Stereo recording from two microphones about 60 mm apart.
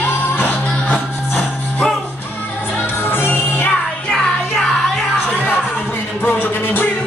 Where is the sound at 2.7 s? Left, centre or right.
Left.